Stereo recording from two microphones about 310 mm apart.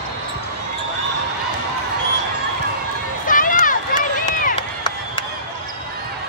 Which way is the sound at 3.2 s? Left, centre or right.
Left.